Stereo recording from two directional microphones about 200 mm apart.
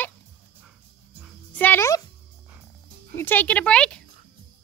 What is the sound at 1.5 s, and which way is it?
Speech, 10° left (ahead or behind).